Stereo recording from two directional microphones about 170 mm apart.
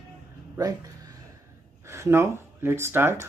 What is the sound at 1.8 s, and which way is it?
Speech, 15° right (ahead or behind).